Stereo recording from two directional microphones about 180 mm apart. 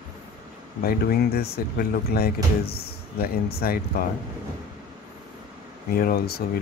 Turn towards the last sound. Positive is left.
turn(degrees=60)  # may be behind; listen again after turning